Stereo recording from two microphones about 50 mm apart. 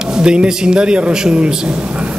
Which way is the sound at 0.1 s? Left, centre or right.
Centre.